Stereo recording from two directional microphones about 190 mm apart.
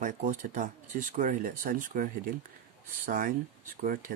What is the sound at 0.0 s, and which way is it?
Speech, 45° right (ahead or behind).